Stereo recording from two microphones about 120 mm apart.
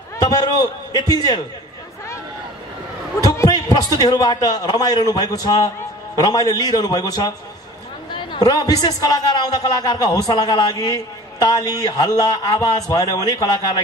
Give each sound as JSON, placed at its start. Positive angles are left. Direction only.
{"t": 0.2, "sound": "a man's voice", "side_deg": 35}
{"t": 3.2, "sound": "a sound", "side_deg": 30}
{"t": 3.9, "sound": "a man's voice", "side_deg": 35}